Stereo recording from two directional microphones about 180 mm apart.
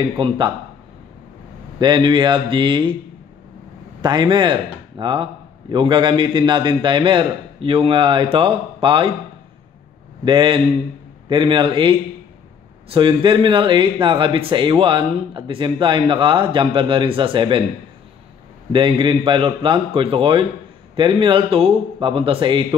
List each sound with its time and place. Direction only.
0.2 s speech: 30° right (ahead or behind)
1.8 s speech: 25° right (ahead or behind)
4.0 s speech: 25° right (ahead or behind)
10.2 s speech: 25° right (ahead or behind)
12.9 s speech: 30° right (ahead or behind)
18.7 s speech: 25° right (ahead or behind)